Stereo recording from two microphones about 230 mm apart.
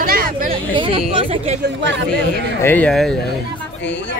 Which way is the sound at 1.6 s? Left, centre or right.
Right.